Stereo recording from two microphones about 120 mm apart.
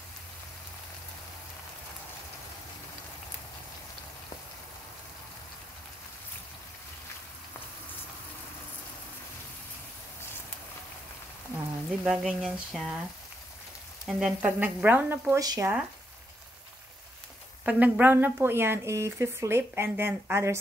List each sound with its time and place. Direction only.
11.5 s frying: 10° right (ahead or behind)
12.2 s speech: 5° right (ahead or behind)
14.0 s speech: 10° right (ahead or behind)
15.3 s speech: 30° right (ahead or behind)
17.6 s speech: 15° right (ahead or behind)